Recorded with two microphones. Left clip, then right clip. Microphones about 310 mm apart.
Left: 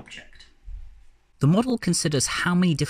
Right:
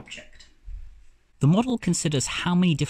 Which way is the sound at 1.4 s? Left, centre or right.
Left.